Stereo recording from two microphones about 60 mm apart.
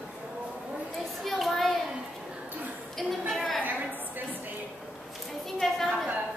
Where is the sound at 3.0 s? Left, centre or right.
Centre.